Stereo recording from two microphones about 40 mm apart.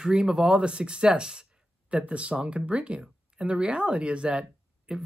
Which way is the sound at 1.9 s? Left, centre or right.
Right.